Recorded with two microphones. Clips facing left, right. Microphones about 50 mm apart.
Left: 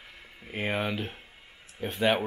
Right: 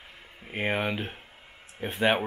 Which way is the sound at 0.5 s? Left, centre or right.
Centre.